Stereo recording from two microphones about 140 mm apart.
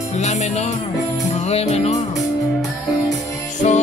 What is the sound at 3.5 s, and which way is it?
Music, 60° left (ahead or behind).